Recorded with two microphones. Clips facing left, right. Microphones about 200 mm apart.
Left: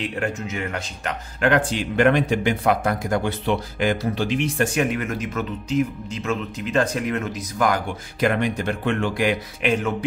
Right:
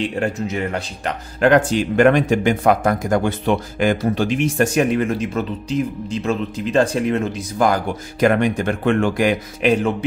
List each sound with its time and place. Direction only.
0.0 s speech: 30° right (ahead or behind)
4.9 s speech: 30° right (ahead or behind)
8.4 s speech: 50° right (ahead or behind)